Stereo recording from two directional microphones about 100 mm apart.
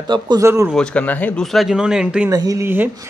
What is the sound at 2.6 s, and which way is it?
Speech, 20° right (ahead or behind).